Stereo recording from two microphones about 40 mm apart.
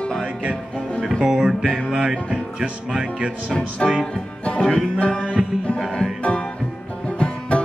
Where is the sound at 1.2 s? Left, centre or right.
Centre.